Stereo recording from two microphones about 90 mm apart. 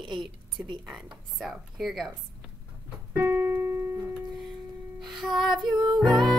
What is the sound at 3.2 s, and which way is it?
Piano, 30° right (ahead or behind).